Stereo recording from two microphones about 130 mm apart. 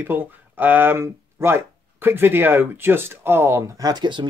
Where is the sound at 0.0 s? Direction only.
15° right (ahead or behind).